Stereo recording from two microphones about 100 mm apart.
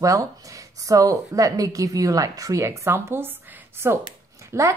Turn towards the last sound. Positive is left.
turn(degrees=-30)  # may be behind; listen again after turning